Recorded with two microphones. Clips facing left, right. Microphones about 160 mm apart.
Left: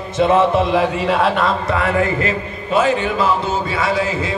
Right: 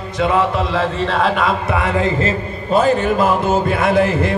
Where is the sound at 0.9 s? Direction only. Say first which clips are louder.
Left 1 dB; 10° left (ahead or behind).